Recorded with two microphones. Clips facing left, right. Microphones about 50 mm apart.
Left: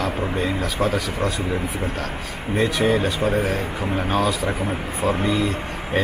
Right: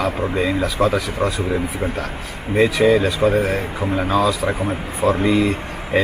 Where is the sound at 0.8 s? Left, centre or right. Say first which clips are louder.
Right 4 dB; right.